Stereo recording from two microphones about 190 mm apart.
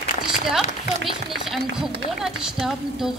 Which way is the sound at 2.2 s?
Centre (ahead or behind).